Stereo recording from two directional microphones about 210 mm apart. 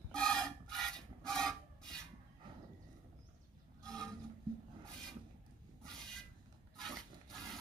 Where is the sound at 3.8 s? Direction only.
5° left (ahead or behind).